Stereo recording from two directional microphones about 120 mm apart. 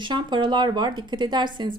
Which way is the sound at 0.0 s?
40° right (ahead or behind).